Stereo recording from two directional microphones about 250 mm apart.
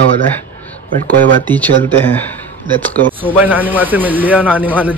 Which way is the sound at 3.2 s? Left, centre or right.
Centre.